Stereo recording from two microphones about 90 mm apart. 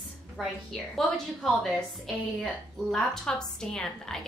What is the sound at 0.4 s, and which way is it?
A woman's voice, centre (ahead or behind).